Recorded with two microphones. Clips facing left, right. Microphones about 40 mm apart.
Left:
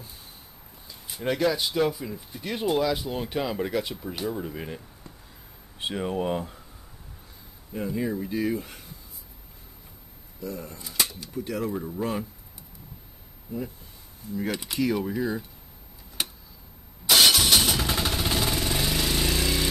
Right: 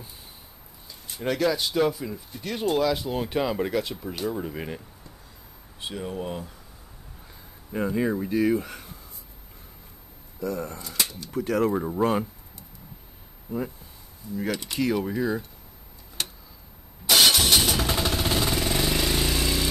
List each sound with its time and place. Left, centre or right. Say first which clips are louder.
0.8 s speech: even; centre
2.4 s speech: right 1 dB; centre
5.8 s speech: left 4 dB; left
7.7 s speech: right 4 dB; right
8.2 s speech: right 4 dB; centre
10.4 s speech: right 6 dB; right
10.8 s speech: even; centre
11.3 s speech: right 6 dB; right
14.5 s speech: right 2 dB; centre
14.8 s speech: right 1 dB; centre
16.2 s a sound: left 1 dB; centre
17.1 s vehicle: even; centre